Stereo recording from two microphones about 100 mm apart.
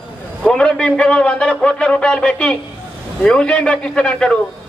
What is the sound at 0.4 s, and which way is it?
A man's voice, 10° left (ahead or behind).